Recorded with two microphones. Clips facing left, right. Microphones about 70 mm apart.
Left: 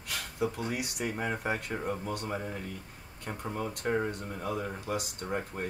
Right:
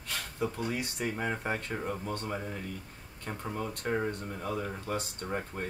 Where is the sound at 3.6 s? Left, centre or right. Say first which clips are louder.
Left 1 dB; centre.